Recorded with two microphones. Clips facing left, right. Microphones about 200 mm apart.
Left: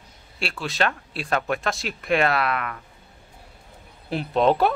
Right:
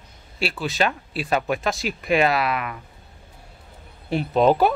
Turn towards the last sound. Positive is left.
turn(degrees=0)  # may be behind; listen again after turning